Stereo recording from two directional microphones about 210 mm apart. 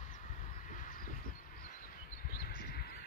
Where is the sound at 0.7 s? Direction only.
40° left (ahead or behind).